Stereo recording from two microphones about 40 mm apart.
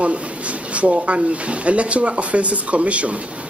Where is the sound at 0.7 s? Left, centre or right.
Right.